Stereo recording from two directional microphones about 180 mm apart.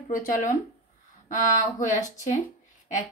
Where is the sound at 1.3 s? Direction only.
45° left (ahead or behind).